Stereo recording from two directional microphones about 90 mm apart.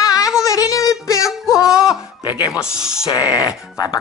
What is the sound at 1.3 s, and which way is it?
Music, 5° right (ahead or behind).